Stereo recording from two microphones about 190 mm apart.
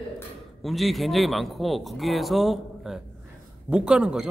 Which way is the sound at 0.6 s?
Centre (ahead or behind).